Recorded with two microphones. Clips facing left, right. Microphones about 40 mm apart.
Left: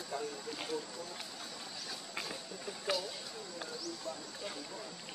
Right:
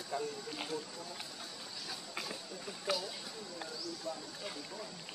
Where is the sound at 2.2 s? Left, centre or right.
Centre.